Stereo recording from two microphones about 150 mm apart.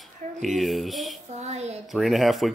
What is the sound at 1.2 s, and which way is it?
Child singing, 50° right (ahead or behind).